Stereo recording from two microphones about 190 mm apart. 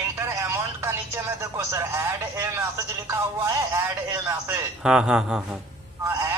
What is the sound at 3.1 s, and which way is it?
Speech, 15° right (ahead or behind).